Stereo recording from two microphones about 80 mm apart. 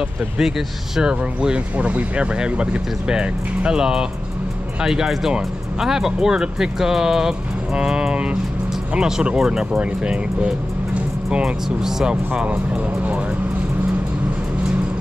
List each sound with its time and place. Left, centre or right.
0.4 s speech: centre